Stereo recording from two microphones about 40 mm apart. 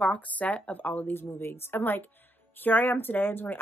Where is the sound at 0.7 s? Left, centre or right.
Left.